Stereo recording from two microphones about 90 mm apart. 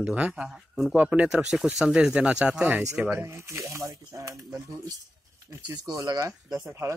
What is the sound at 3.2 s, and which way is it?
Speech, 35° right (ahead or behind).